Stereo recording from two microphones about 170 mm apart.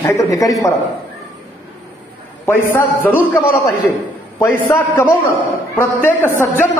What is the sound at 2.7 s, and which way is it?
A man's voice, 10° left (ahead or behind).